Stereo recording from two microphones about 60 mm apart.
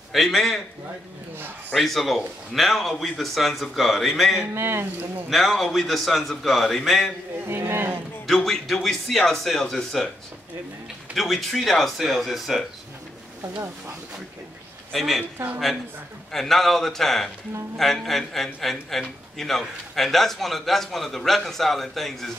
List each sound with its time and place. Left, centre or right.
0.1 s a man's voice: centre
1.7 s a man's voice: centre
4.6 s speech: right
5.3 s a man's voice: centre
7.4 s speech: right
8.5 s a man's voice: centre
11.1 s a man's voice: centre
14.9 s speech: centre
16.3 s a man's voice: centre